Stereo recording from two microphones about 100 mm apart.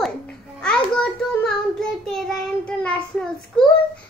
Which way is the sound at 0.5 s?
10° left (ahead or behind).